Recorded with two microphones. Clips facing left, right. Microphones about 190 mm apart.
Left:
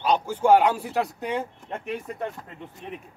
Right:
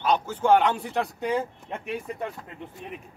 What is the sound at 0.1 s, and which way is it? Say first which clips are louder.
Speech: left 2 dB; 10° left (ahead or behind).